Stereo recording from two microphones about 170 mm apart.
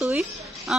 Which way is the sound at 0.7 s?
5° right (ahead or behind).